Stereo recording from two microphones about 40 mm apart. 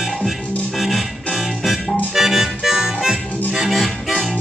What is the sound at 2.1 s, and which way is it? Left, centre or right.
Harmonica, centre.